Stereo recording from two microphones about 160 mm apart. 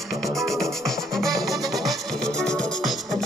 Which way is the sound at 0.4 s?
Centre (ahead or behind).